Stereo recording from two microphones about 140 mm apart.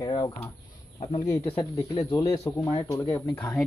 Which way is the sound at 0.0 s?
30° left (ahead or behind).